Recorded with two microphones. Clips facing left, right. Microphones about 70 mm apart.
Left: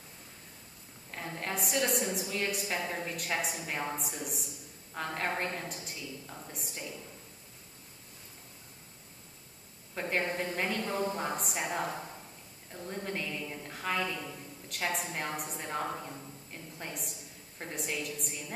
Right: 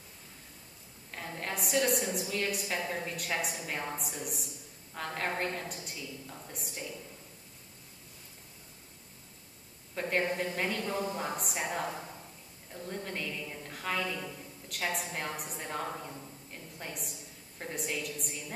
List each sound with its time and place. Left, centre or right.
1.1 s a sound: centre
2.1 s a woman's voice: centre
9.9 s a woman's voice: centre